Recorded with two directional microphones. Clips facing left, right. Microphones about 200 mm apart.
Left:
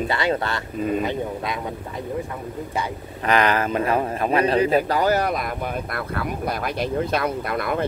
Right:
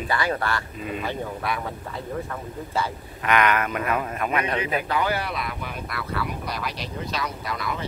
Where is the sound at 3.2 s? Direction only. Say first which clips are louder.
Left 2 dB; 35° left (ahead or behind).